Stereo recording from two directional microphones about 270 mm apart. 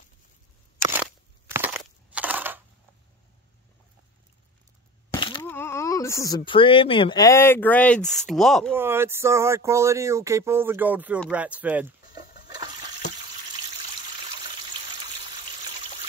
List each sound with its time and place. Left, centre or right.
1.5 s crushing: centre
5.1 s breaking: centre
5.5 s speech: centre
8.7 s speech: centre
11.1 s splash: centre